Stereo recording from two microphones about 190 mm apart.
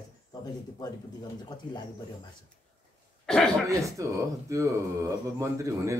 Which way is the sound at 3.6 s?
15° right (ahead or behind).